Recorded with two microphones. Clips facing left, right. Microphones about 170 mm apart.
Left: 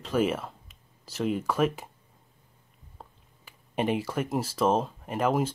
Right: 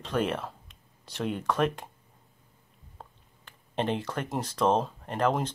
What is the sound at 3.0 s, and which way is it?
Speech, 5° left (ahead or behind).